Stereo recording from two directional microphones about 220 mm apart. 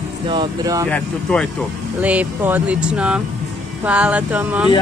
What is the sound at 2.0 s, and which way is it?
Speech, 5° right (ahead or behind).